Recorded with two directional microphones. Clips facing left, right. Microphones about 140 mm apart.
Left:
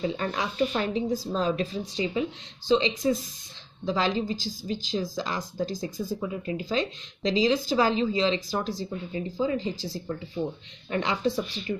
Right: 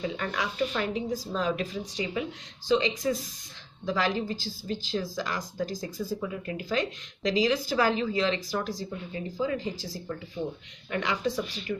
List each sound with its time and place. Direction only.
0.0 s speech: 30° left (ahead or behind)